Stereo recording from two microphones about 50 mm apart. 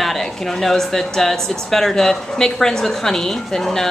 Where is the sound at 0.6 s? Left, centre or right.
Centre.